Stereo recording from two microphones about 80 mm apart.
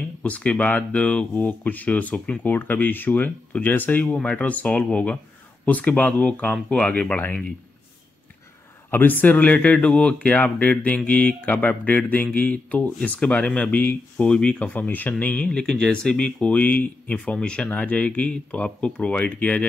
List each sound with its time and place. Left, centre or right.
0.2 s speech: centre
8.9 s speech: left